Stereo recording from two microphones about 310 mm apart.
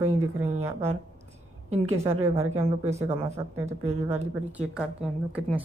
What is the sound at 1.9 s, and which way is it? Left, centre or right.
Speech, centre.